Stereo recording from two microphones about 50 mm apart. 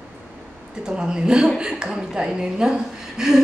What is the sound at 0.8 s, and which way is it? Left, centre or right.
A woman's voice, centre.